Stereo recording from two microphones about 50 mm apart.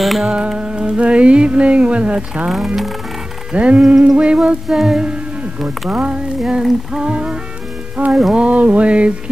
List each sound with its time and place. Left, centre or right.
0.0 s music: centre
0.3 s music: centre
2.5 s music: centre
3.5 s music: right
4.6 s a sound: centre
5.9 s music: centre
6.6 s music: centre
7.0 s music: right